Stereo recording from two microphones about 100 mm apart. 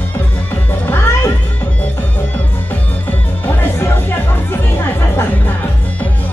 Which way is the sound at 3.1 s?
20° left (ahead or behind).